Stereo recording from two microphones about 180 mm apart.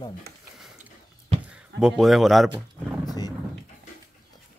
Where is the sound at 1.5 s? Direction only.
5° right (ahead or behind).